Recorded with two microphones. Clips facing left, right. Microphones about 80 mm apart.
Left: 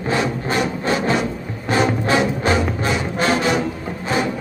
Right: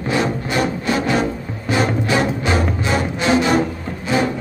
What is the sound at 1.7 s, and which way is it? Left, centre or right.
Music, left.